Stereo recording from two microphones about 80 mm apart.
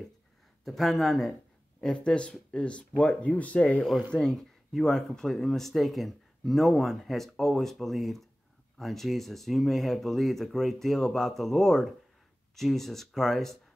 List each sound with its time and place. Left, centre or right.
0.7 s speech: centre
4.1 s speech: centre